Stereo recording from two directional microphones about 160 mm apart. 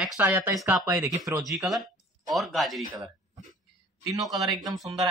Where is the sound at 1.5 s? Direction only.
Centre (ahead or behind).